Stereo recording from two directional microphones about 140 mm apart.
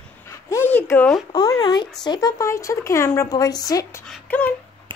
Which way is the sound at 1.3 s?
25° left (ahead or behind).